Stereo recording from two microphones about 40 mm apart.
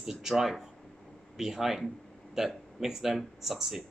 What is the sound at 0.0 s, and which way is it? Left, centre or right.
A man's voice, centre.